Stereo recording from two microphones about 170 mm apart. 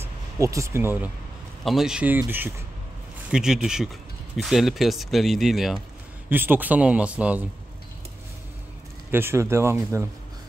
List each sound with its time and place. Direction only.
0.4 s speech: 20° right (ahead or behind)
1.6 s speech: centre (ahead or behind)
9.1 s speech: 15° right (ahead or behind)